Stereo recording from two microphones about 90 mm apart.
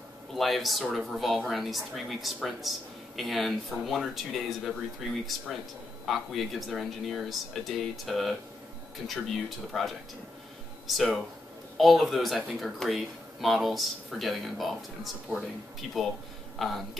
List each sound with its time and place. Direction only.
0.3 s speech: centre (ahead or behind)